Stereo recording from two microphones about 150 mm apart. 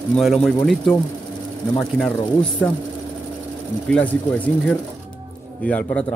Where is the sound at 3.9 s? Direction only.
5° left (ahead or behind).